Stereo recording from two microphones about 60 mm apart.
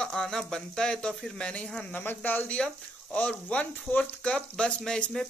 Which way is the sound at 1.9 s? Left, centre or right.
Left.